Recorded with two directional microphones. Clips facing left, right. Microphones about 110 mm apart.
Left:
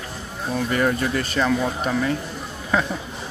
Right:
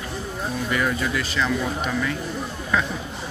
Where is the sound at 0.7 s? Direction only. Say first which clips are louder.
Left 3 dB; 45° left (ahead or behind).